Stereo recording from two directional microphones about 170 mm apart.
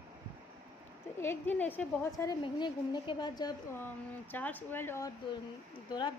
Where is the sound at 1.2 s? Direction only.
10° left (ahead or behind).